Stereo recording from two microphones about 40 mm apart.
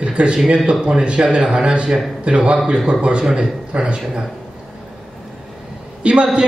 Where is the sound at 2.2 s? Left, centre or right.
Right.